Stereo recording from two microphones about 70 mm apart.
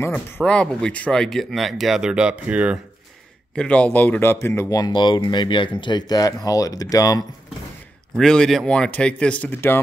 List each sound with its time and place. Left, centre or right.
0.5 s speech: centre
2.0 s speech: centre
3.5 s speech: centre
4.2 s speech: left
4.7 s speech: left
8.2 s speech: centre
9.5 s speech: left